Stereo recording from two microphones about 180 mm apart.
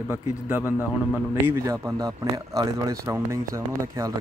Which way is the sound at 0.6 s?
15° left (ahead or behind).